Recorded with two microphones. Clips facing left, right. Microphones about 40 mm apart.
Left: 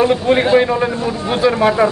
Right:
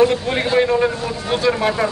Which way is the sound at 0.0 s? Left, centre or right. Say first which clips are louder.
Left 3 dB; centre.